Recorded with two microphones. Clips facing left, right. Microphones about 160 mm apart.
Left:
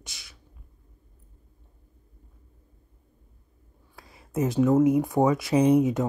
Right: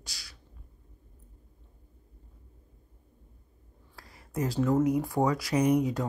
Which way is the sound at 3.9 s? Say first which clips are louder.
Left 5 dB; 20° left (ahead or behind).